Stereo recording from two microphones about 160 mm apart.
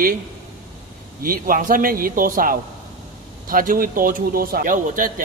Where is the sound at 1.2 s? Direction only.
60° right (ahead or behind).